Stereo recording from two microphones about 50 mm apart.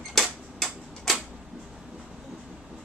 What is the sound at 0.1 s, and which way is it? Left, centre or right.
Tick-tock, centre.